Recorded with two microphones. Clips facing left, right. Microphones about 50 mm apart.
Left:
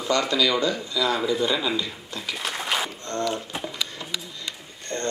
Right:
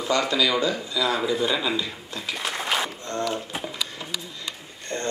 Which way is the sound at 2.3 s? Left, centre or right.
Centre.